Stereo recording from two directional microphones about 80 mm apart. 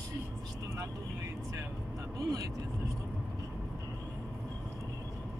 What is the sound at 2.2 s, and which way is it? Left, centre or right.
Speech, right.